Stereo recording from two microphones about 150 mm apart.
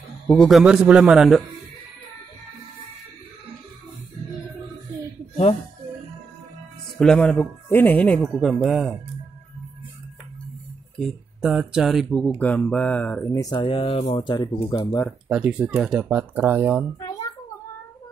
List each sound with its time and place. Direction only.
0.4 s speech: centre (ahead or behind)
7.0 s speech: 5° left (ahead or behind)
11.0 s speech: 5° right (ahead or behind); by 13.4 s 10° left (ahead or behind)
13.4 s speech: 25° left (ahead or behind)
13.7 s speech: 40° left (ahead or behind); by 15.1 s 20° left (ahead or behind)
15.2 s speech: 5° right (ahead or behind)
17.0 s a sound: 25° left (ahead or behind)